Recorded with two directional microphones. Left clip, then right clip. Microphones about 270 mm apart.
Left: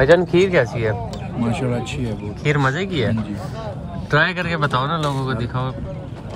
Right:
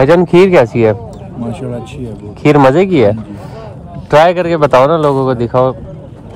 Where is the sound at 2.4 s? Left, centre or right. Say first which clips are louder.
Right 13 dB; right.